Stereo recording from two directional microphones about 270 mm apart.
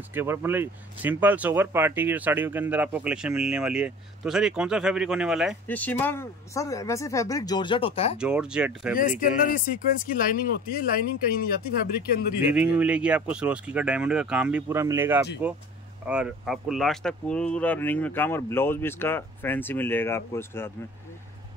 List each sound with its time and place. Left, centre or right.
0.1 s speech: centre; by 8.2 s left
8.2 s speech: centre
9.2 s speech: left
12.5 s speech: centre